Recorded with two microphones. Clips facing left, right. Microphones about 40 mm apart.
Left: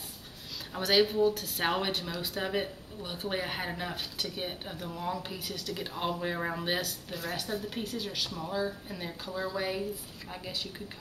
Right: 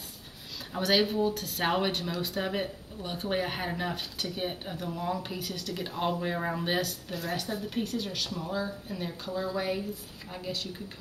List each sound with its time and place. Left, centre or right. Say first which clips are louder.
0.7 s speech: even; centre